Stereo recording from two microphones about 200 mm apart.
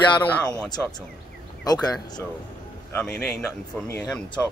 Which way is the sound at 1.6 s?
20° left (ahead or behind).